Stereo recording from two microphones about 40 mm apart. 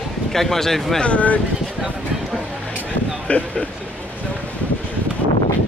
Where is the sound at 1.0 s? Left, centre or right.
Left.